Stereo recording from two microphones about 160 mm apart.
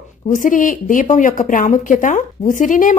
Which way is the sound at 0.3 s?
55° left (ahead or behind).